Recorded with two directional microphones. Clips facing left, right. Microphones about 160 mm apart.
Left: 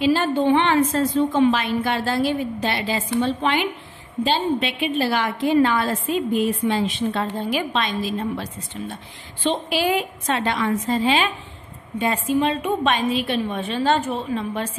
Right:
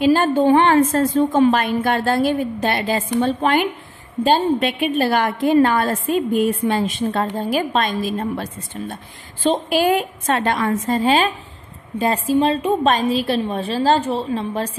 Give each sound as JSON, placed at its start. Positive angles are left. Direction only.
{"t": 0.0, "sound": "a woman's voice", "side_deg": -50}